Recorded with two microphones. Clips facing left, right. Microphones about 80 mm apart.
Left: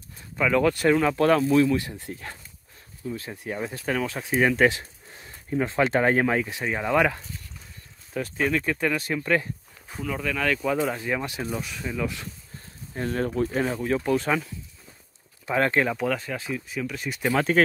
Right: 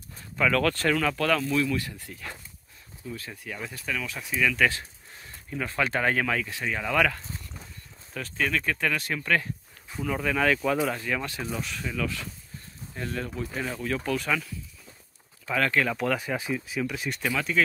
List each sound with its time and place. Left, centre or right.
0.4 s speech: centre; by 4.6 s left
5.7 s speech: left
10.0 s speech: centre
10.6 s speech: centre
11.0 s speech: centre
12.9 s speech: left
15.9 s speech: centre
16.2 s speech: centre